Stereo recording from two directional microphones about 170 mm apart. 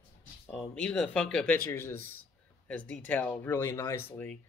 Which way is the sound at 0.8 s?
5° left (ahead or behind).